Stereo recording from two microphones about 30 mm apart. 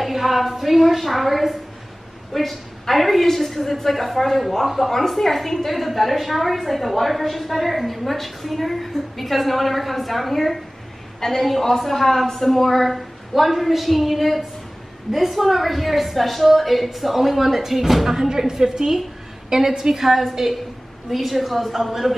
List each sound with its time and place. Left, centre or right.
0.0 s a woman's voice: centre